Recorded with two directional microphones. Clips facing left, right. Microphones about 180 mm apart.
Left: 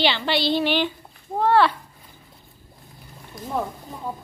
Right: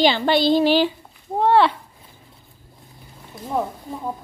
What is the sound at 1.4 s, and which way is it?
Speech, 25° right (ahead or behind).